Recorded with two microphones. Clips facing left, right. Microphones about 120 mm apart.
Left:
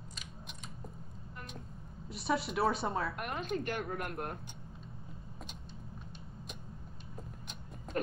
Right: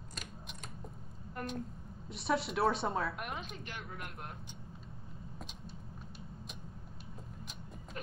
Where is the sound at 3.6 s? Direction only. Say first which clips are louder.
Left 9 dB; 50° left (ahead or behind).